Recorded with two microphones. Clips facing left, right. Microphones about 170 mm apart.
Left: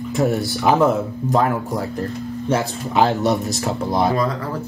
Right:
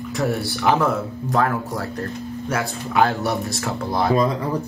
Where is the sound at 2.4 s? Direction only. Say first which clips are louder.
Left 5 dB; 25° left (ahead or behind).